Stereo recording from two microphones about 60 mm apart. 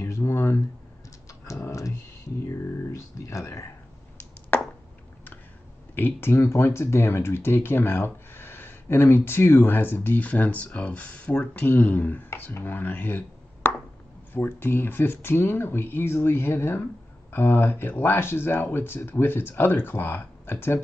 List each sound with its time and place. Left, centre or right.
0.0 s a sound: left
1.4 s computer keyboard: left
2.4 s a sound: left
4.5 s chopping: left
5.9 s speech: left
6.3 s speech: left